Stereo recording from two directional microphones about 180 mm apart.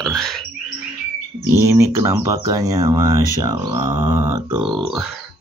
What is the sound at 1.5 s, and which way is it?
Speech, 15° right (ahead or behind).